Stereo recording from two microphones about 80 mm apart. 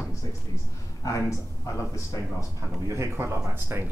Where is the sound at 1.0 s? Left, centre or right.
Left.